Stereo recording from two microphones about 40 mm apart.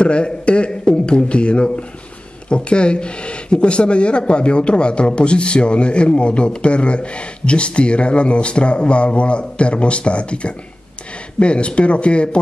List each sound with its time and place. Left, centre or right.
0.0 s speech: left
0.7 s a sound: left
2.5 s speech: left